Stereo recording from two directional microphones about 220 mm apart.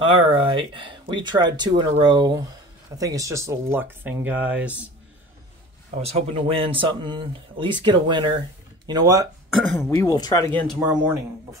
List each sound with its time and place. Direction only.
0.3 s speech: 25° right (ahead or behind); by 4.8 s 5° right (ahead or behind)
5.9 s speech: 30° right (ahead or behind)
9.8 s speech: 10° left (ahead or behind)
10.7 s speech: 5° right (ahead or behind)